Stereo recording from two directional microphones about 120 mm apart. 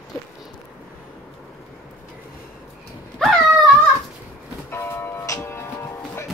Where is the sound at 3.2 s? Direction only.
5° left (ahead or behind).